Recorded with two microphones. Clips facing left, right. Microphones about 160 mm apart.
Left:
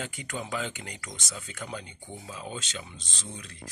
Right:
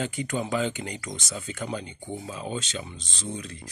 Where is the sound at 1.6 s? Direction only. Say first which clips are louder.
Right 5 dB; 10° right (ahead or behind).